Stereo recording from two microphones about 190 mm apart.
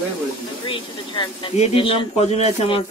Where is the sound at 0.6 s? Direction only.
25° left (ahead or behind).